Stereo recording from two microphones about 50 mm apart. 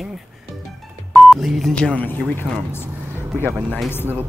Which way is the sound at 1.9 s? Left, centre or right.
Left.